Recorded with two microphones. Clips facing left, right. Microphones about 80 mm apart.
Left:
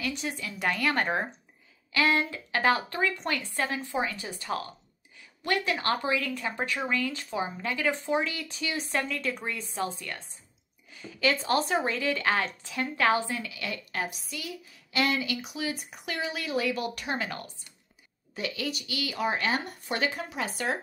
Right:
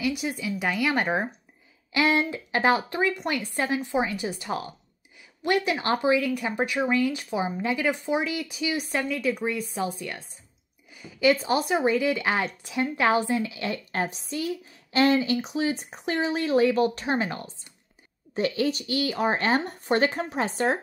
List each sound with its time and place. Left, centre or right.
0.0 s a woman's voice: centre; by 20.8 s right